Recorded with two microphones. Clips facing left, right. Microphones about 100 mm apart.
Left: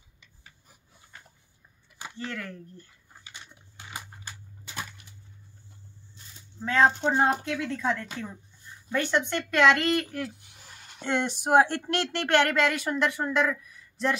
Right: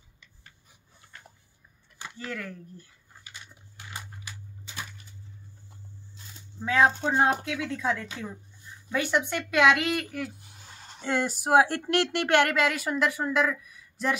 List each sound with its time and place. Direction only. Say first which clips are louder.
2.1 s speech: even; 5° right (ahead or behind)
6.6 s a woman's voice: left 1 dB; 5° right (ahead or behind)
10.4 s a sound: right 2 dB; 30° right (ahead or behind)
11.0 s speech: even; 5° right (ahead or behind)